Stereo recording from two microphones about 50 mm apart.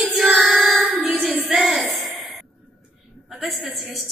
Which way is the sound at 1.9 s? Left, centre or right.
Centre.